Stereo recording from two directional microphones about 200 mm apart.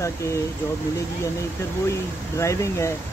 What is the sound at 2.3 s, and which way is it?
Speech, 15° left (ahead or behind).